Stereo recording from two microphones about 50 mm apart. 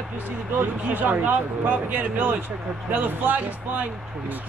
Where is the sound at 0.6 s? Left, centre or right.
Right.